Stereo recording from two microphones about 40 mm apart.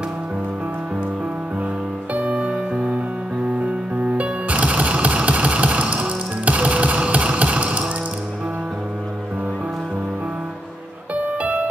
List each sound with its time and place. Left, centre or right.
2.1 s music: right
2.5 s music: right
11.4 s music: right